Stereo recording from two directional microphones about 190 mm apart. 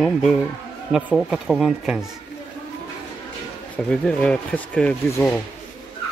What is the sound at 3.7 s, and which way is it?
Speech, 5° left (ahead or behind).